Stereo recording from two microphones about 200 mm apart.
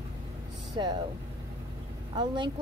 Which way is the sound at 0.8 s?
20° right (ahead or behind).